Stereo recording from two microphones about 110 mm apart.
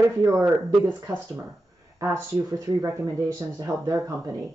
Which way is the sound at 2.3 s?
25° right (ahead or behind).